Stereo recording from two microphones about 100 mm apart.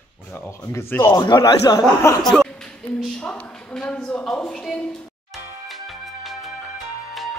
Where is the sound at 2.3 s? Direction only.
5° left (ahead or behind).